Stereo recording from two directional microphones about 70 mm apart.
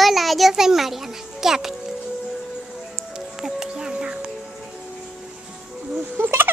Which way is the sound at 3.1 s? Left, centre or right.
Centre.